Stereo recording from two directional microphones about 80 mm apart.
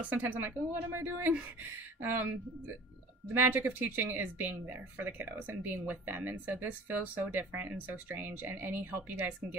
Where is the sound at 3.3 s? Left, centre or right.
Right.